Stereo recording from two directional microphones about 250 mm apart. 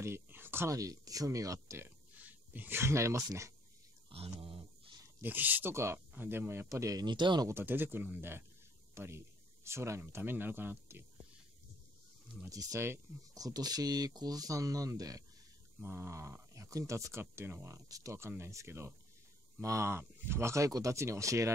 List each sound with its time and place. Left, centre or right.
0.0 s speech: centre
4.1 s a sound: right
5.2 s speech: centre
12.4 s speech: centre